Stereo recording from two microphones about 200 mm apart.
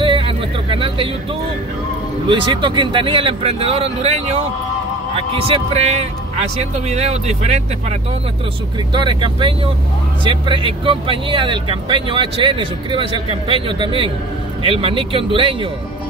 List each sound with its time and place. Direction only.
0.0 s a sound: 25° right (ahead or behind)
2.2 s speech: 25° right (ahead or behind)
5.5 s speech: 35° right (ahead or behind)
8.9 s speech: 25° right (ahead or behind)